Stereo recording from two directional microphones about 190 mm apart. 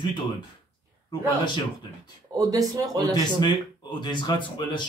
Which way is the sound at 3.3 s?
25° left (ahead or behind).